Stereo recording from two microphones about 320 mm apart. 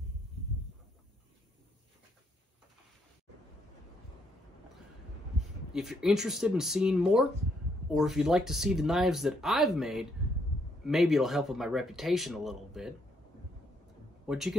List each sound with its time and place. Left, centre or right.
5.7 s speech: centre
14.2 s speech: centre